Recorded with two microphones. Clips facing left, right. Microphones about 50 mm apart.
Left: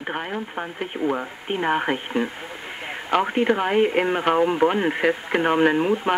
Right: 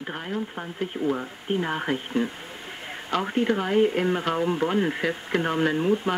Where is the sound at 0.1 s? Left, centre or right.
Left.